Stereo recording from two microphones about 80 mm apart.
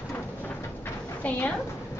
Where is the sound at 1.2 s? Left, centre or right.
Centre.